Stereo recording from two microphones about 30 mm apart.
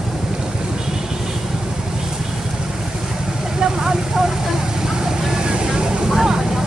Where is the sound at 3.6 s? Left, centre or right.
Centre.